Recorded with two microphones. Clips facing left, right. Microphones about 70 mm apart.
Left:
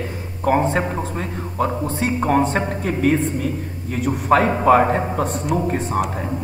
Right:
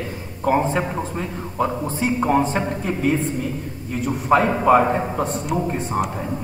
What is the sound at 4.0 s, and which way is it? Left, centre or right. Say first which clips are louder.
A man's voice: left 1 dB; centre.